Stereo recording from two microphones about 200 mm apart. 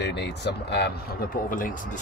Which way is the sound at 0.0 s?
55° left (ahead or behind).